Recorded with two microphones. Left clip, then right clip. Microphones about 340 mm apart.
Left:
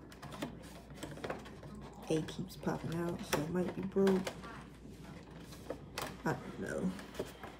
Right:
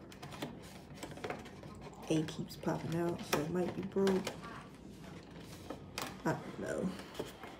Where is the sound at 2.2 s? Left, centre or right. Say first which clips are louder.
Right 1 dB; centre.